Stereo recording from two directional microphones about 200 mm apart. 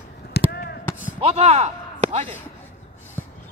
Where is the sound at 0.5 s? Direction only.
50° left (ahead or behind).